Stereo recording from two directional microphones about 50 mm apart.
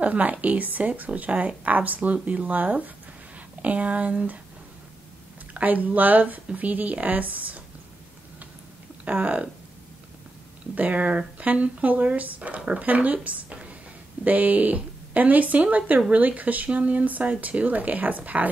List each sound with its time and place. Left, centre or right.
0.0 s speech: right
5.5 s speech: right
9.0 s speech: right
10.7 s speech: right